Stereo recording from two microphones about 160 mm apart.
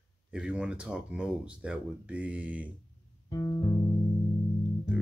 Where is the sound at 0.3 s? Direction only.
5° right (ahead or behind).